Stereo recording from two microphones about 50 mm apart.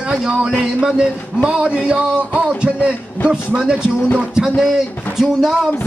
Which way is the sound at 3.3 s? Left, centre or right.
Centre.